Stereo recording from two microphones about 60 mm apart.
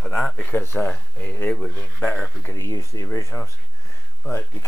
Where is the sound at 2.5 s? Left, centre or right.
Left.